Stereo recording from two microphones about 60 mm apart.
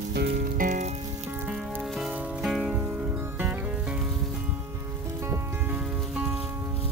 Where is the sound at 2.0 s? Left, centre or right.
Centre.